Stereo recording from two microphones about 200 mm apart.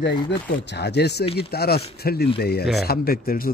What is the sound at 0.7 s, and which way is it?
Speech, 55° left (ahead or behind).